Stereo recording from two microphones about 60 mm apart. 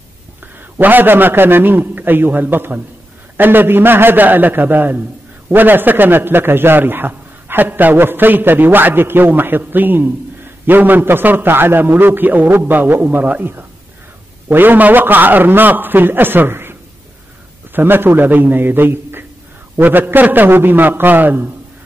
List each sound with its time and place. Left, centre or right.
0.7 s a man's voice: right
17.7 s a man's voice: right